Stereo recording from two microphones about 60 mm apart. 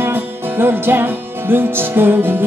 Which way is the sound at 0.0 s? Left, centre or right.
Right.